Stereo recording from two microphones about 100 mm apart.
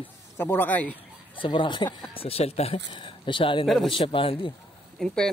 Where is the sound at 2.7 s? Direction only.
55° left (ahead or behind).